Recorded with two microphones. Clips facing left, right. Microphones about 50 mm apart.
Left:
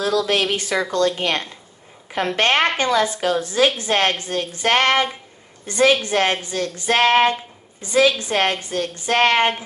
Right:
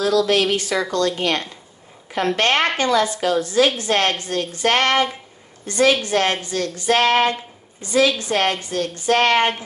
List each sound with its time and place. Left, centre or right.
0.3 s a woman's voice: left